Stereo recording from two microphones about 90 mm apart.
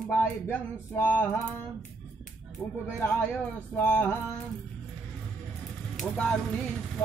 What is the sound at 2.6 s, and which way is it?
Speech, 5° left (ahead or behind).